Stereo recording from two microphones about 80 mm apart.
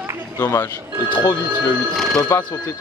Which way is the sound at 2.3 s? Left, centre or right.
Left.